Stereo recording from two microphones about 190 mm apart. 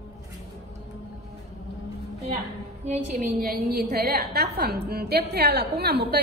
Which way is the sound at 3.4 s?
55° right (ahead or behind).